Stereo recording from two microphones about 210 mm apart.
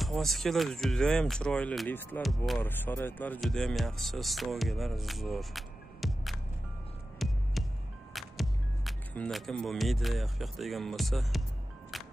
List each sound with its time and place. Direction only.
0.0 s speech: centre (ahead or behind)
7.2 s music: centre (ahead or behind)
8.1 s speech: centre (ahead or behind)